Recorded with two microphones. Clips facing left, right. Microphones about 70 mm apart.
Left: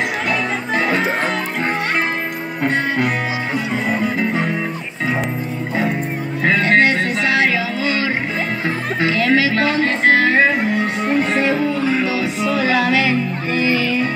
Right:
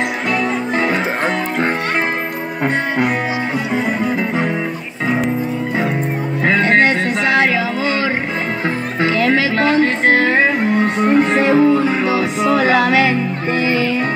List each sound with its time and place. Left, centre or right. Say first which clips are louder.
6.4 s music: right 1 dB; right